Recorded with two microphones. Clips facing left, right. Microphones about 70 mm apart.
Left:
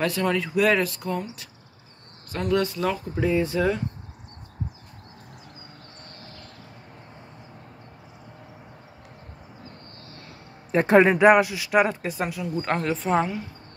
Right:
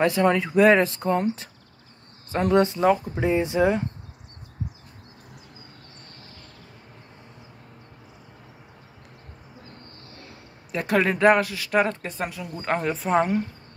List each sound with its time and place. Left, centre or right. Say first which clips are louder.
0.0 s speech: right 4 dB; right
2.3 s speech: right 4 dB; right
10.7 s speech: left 6 dB; left
11.1 s speech: left 2 dB; centre